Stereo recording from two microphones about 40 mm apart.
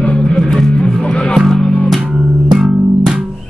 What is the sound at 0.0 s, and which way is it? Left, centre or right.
Music, left.